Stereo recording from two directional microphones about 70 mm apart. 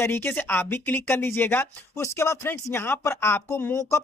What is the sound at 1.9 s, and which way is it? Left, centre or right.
Speech, left.